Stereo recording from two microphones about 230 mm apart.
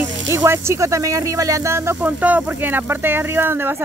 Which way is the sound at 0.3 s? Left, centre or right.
Centre.